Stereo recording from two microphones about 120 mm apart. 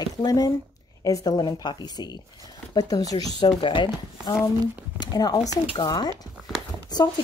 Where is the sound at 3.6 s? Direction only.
40° left (ahead or behind).